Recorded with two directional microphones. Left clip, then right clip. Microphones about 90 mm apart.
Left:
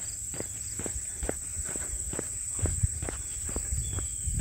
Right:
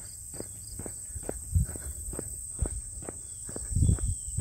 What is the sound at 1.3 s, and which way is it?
Walk, 15° right (ahead or behind).